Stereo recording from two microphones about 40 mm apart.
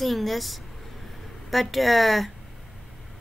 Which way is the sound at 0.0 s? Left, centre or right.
Centre.